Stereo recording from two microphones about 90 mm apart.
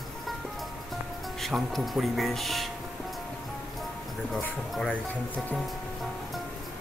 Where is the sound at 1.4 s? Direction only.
Centre (ahead or behind).